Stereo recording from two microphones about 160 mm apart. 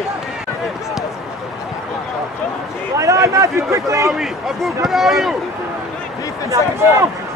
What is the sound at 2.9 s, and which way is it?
A man's voice, 20° right (ahead or behind).